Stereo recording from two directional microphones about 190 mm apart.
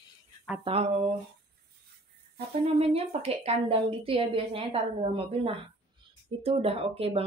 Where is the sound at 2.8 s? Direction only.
30° right (ahead or behind).